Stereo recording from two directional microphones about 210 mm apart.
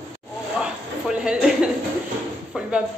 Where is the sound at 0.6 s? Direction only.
5° right (ahead or behind).